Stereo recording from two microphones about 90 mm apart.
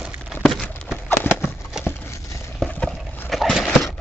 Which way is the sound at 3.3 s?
Centre (ahead or behind).